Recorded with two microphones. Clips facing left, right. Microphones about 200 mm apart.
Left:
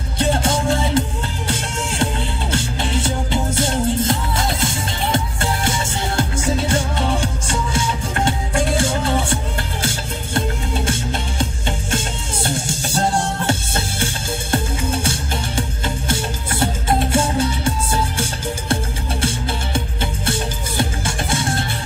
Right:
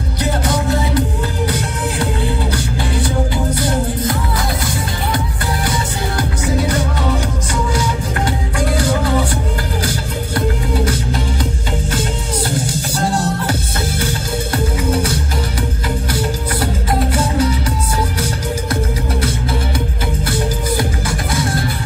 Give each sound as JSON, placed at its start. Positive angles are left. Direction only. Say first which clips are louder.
{"t": 0.2, "sound": "music", "louder": "even", "side_deg": 25}
{"t": 2.5, "sound": "music", "louder": "right 2 dB", "side_deg": 25}
{"t": 12.4, "sound": "music", "louder": "right 3 dB", "side_deg": 25}
{"t": 21.3, "sound": "music", "louder": "right 2 dB", "side_deg": 25}